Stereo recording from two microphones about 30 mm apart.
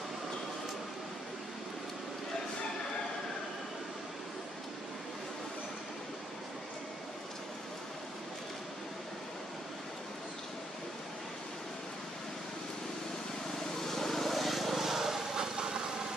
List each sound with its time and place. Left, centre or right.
13.8 s vehicle: centre
14.8 s vehicle: centre
15.2 s engine: right